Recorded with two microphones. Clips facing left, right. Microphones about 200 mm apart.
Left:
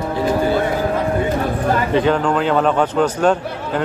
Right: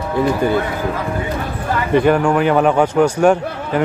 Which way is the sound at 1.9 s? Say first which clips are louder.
Right 6 dB; 10° right (ahead or behind).